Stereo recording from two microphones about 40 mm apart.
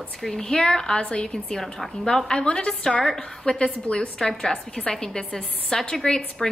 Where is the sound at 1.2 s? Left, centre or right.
Centre.